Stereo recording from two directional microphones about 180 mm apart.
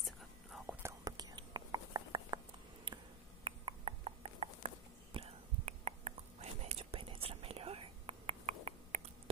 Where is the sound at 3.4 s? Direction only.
30° right (ahead or behind).